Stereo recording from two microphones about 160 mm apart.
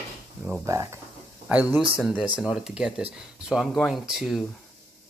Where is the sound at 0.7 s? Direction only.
20° right (ahead or behind).